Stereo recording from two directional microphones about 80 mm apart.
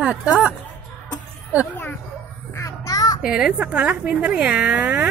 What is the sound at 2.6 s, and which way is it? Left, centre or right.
Child singing, left.